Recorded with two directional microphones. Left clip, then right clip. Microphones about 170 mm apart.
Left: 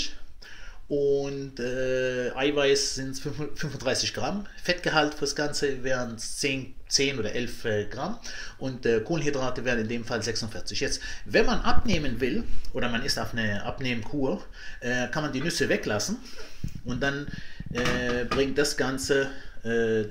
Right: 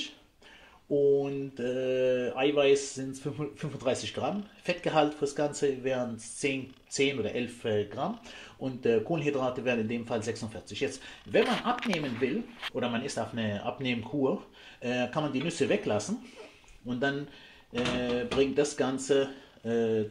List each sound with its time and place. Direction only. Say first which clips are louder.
1.1 s speech: left 1 dB; 5° right (ahead or behind)
11.3 s speech: left 2 dB; 10° left (ahead or behind)
17.7 s a sound: left 3 dB; centre (ahead or behind)
18.0 s speech: left 2 dB; centre (ahead or behind)